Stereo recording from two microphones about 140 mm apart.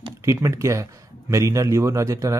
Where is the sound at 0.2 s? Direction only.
20° right (ahead or behind).